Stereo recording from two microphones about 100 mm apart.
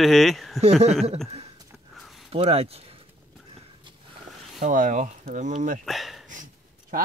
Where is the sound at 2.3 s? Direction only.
80° right.